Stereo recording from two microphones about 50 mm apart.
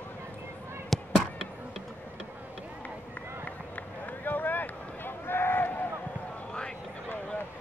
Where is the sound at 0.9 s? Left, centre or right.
Centre.